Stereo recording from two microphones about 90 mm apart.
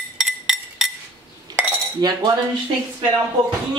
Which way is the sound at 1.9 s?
45° right (ahead or behind).